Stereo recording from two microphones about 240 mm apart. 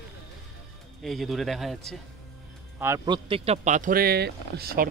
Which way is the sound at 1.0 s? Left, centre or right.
Centre.